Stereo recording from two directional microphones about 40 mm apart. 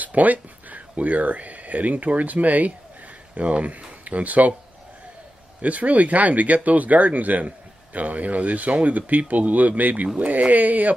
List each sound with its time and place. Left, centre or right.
0.0 s speech: right
5.6 s speech: right